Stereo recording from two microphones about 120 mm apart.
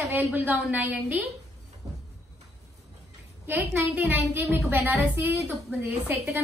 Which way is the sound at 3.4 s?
20° right (ahead or behind).